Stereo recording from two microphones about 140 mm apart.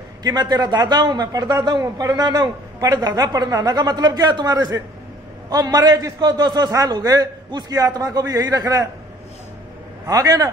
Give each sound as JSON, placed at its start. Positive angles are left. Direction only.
{"t": 0.2, "sound": "a man's voice", "side_deg": -30}
{"t": 10.0, "sound": "a man's voice", "side_deg": -25}